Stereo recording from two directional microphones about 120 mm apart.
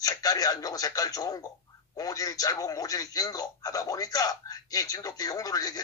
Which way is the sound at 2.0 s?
30° left (ahead or behind).